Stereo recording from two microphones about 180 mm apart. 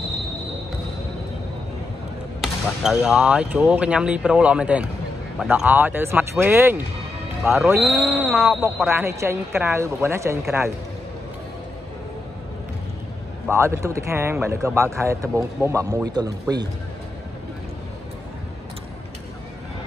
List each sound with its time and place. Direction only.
2.4 s speech: centre (ahead or behind)
7.8 s speech: 10° right (ahead or behind)
13.5 s speech: 15° right (ahead or behind)